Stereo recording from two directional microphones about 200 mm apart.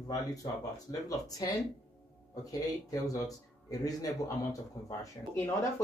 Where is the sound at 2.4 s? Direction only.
15° left (ahead or behind).